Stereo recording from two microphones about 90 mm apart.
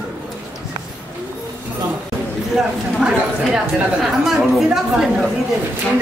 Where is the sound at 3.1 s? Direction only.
5° right (ahead or behind).